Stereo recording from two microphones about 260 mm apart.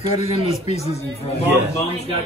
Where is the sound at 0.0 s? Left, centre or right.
Left.